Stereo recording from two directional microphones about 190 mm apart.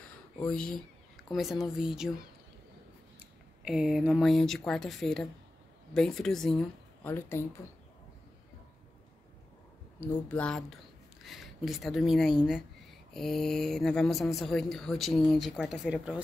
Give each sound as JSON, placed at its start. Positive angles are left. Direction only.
{"t": 0.5, "sound": "speech", "side_deg": 5}
{"t": 3.6, "sound": "speech", "side_deg": -5}
{"t": 9.9, "sound": "speech", "side_deg": 10}